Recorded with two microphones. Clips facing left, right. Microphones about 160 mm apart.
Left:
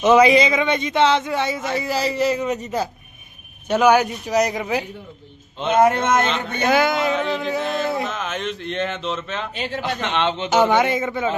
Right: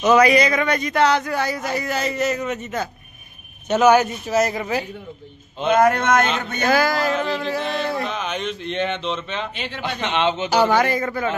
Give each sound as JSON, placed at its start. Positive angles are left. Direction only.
{"t": 0.0, "sound": "a man's voice", "side_deg": 25}
{"t": 3.6, "sound": "a man's voice", "side_deg": 10}
{"t": 6.9, "sound": "speech", "side_deg": 0}
{"t": 9.5, "sound": "a man's voice", "side_deg": 40}
{"t": 10.0, "sound": "speech", "side_deg": -5}
{"t": 10.7, "sound": "a man's voice", "side_deg": 20}
{"t": 11.0, "sound": "speech", "side_deg": 0}